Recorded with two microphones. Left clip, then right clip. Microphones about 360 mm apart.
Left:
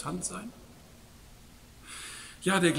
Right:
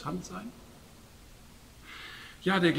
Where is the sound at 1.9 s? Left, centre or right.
Centre.